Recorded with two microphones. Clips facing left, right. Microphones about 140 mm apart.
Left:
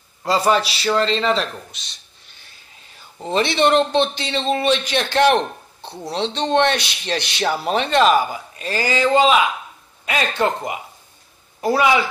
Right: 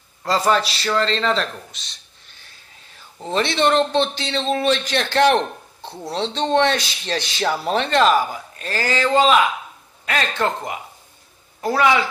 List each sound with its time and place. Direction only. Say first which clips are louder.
0.2 s a man's voice: left 1 dB; 10° left (ahead or behind)
3.2 s a man's voice: left 2 dB; 5° left (ahead or behind)
7.2 s speech: right 1 dB; 70° left (ahead or behind)
7.4 s a man's voice: even; 10° left (ahead or behind)